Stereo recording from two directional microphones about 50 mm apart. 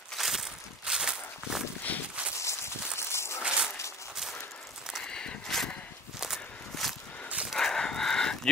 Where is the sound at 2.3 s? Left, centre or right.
Left.